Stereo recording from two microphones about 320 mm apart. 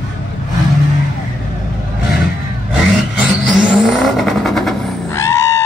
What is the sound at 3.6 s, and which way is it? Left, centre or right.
Vehicle, centre.